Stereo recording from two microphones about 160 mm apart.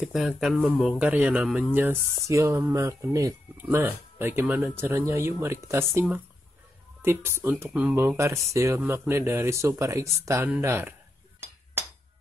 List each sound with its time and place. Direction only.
0.0 s a man's voice: 5° right (ahead or behind)